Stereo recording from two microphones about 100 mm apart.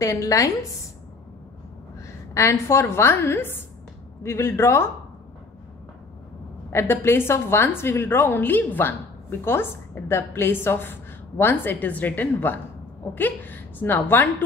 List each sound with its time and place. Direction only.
0.0 s a woman's voice: 35° left (ahead or behind)
2.4 s a woman's voice: 30° left (ahead or behind)
6.7 s a woman's voice: 25° left (ahead or behind)